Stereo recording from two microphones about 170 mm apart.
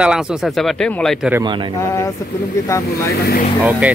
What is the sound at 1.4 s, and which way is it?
Speech, 30° right (ahead or behind).